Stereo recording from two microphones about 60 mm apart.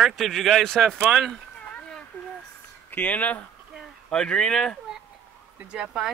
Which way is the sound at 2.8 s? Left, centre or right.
Left.